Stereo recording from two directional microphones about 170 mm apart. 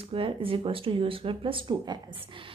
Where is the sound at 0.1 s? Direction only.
30° right (ahead or behind).